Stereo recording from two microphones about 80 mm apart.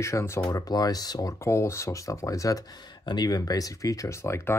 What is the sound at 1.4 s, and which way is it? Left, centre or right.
Speech, left.